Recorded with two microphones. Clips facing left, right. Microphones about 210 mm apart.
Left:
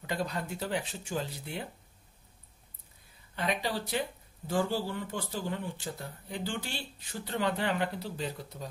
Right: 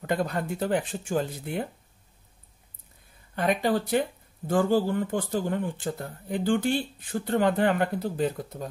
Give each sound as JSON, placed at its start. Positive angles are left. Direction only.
{"t": 0.0, "sound": "speech", "side_deg": -50}
{"t": 3.3, "sound": "speech", "side_deg": -50}